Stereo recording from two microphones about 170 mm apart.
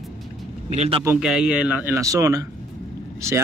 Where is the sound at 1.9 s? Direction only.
20° right (ahead or behind).